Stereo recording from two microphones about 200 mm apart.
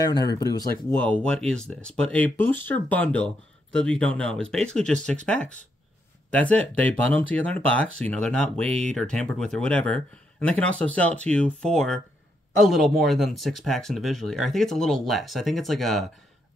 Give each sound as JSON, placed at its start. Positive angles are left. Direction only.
{"t": 0.0, "sound": "speech", "side_deg": 20}
{"t": 8.6, "sound": "speech", "side_deg": -30}
{"t": 8.9, "sound": "speech", "side_deg": 5}